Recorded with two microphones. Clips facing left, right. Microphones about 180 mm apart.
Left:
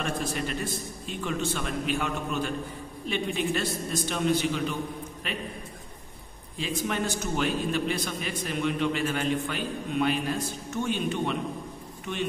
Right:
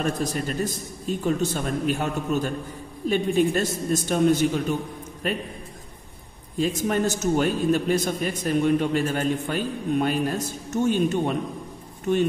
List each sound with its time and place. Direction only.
0.0 s a man's voice: 40° right (ahead or behind)
6.6 s a man's voice: 45° right (ahead or behind)